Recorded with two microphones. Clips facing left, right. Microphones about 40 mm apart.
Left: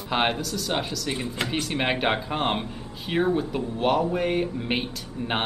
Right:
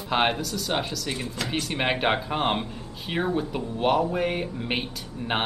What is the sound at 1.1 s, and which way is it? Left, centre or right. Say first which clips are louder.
Speech: left 2 dB; left.